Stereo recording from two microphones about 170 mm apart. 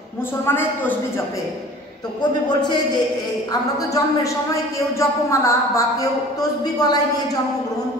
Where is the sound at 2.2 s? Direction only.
25° left (ahead or behind).